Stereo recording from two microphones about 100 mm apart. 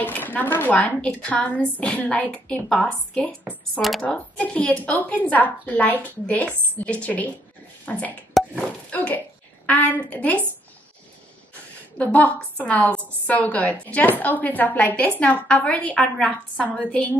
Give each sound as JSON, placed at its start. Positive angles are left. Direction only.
{"t": 0.0, "sound": "a woman's voice", "side_deg": 20}
{"t": 12.0, "sound": "a woman's voice", "side_deg": 15}